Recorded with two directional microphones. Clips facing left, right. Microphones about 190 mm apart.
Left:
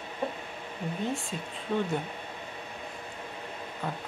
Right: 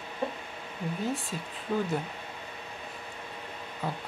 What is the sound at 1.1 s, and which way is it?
Speech, centre (ahead or behind).